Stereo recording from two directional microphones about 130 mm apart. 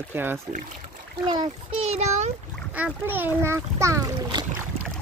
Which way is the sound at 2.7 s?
15° right (ahead or behind).